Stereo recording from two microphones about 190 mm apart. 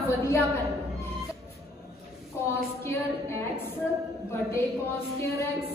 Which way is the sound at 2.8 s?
15° left (ahead or behind).